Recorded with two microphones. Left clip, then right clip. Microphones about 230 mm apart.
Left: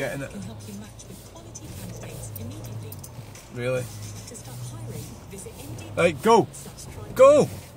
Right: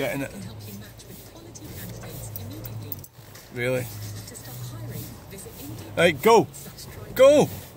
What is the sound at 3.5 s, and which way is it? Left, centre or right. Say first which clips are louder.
Speech: right 1 dB; centre.